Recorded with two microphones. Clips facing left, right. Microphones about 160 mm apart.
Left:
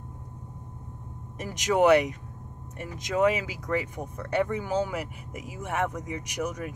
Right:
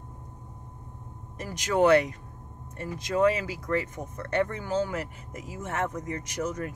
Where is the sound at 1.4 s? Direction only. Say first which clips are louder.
Left 1 dB; 15° left (ahead or behind).